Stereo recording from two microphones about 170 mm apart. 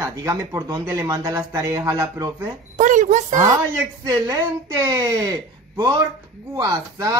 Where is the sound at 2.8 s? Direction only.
50° right (ahead or behind).